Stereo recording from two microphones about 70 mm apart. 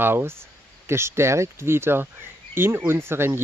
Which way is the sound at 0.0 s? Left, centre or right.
Right.